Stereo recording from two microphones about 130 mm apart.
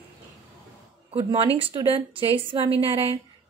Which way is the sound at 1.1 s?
45° right (ahead or behind).